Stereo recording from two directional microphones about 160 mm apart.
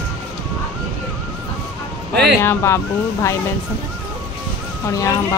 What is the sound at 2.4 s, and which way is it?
Speech, 15° left (ahead or behind).